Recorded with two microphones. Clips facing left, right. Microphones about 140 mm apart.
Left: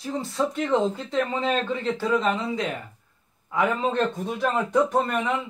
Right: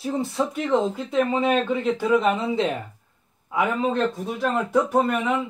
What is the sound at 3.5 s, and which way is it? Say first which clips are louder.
A man's voice: right 1 dB; 5° right (ahead or behind).